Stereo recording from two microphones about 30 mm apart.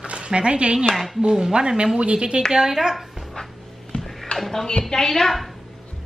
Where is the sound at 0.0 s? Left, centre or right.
Right.